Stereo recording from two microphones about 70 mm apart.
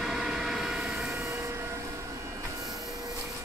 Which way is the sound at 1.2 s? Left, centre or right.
Right.